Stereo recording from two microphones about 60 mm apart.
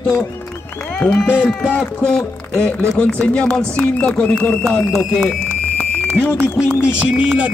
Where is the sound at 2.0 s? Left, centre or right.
Centre.